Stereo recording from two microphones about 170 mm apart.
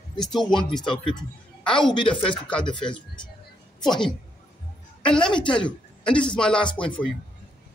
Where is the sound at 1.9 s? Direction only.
30° left (ahead or behind).